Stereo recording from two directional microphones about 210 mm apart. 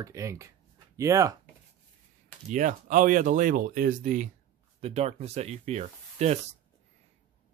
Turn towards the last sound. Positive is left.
turn(degrees=-30)  # may be behind; listen again after turning